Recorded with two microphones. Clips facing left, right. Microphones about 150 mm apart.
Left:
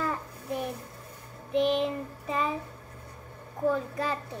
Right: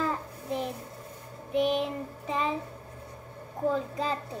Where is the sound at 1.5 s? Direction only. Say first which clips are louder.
Left 1 dB; 5° right (ahead or behind).